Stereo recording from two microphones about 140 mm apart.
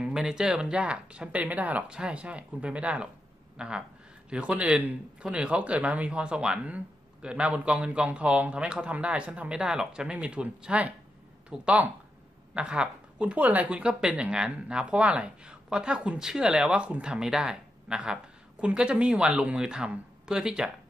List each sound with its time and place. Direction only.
0.0 s speech: 5° right (ahead or behind)